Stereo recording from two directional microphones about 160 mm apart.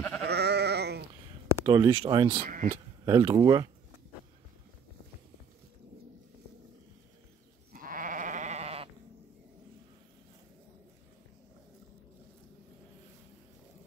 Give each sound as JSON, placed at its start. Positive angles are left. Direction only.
{"t": 0.2, "sound": "sheep", "side_deg": -90}
{"t": 1.5, "sound": "speech", "side_deg": -25}
{"t": 2.4, "sound": "speech", "side_deg": -60}
{"t": 2.7, "sound": "speech", "side_deg": -30}
{"t": 7.7, "sound": "goat", "side_deg": -60}